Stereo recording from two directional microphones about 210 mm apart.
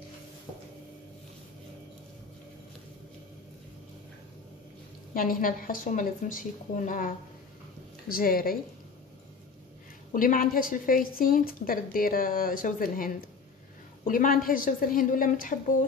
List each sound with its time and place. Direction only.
5.1 s a woman's voice: 40° left (ahead or behind)
10.1 s a woman's voice: 40° left (ahead or behind)